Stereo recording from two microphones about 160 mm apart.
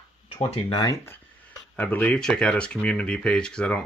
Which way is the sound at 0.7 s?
20° left (ahead or behind).